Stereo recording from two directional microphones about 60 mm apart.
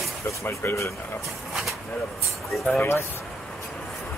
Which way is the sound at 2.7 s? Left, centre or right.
Left.